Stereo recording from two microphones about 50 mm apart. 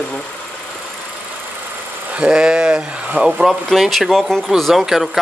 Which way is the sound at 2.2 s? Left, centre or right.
Centre.